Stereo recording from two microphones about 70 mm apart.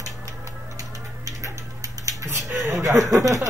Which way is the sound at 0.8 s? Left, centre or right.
Right.